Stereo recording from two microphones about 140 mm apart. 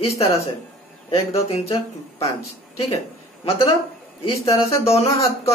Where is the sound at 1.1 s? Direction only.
45° left (ahead or behind).